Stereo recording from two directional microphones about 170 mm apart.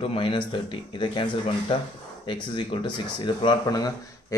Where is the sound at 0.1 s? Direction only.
30° left (ahead or behind).